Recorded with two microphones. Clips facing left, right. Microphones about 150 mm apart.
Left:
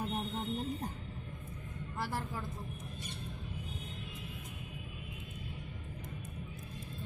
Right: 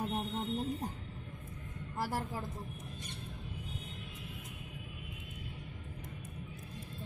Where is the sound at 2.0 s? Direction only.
40° right (ahead or behind).